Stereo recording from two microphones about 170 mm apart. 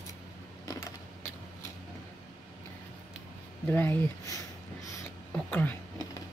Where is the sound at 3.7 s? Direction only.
10° left (ahead or behind).